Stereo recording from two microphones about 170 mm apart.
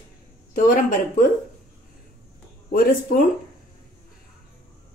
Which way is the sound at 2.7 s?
55° left (ahead or behind).